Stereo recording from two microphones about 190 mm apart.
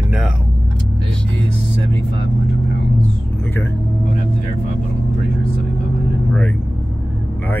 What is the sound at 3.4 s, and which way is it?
Speech, 10° left (ahead or behind).